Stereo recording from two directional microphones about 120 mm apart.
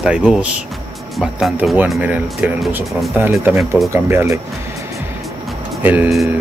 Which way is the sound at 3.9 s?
20° right (ahead or behind).